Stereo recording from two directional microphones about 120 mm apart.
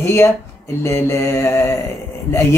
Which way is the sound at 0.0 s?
20° left (ahead or behind).